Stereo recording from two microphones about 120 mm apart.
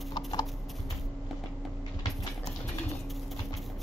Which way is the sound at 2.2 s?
35° left (ahead or behind).